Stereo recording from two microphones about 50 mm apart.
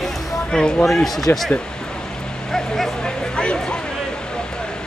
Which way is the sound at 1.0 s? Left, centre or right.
Centre.